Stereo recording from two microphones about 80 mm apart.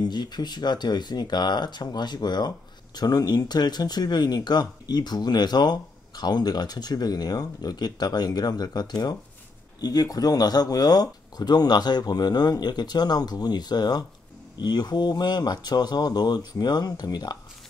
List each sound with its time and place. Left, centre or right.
0.0 s speech: left